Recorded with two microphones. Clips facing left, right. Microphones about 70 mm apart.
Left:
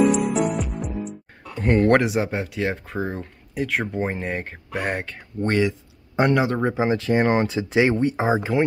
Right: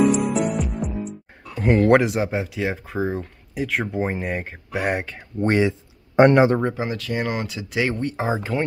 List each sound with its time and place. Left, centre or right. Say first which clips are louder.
0.6 s music: right 2 dB; centre
1.6 s speech: right 1 dB; centre
5.4 s speech: right 2 dB; centre
6.1 s speech: right 6 dB; right
6.6 s speech: left 3 dB; left